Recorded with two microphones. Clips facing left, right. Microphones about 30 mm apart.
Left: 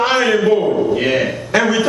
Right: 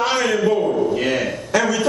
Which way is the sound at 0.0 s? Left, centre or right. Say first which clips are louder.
Left 4 dB; left.